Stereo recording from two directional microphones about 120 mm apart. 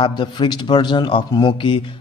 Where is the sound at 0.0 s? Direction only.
40° left (ahead or behind).